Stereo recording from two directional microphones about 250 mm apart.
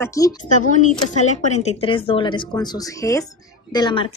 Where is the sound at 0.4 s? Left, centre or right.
Left.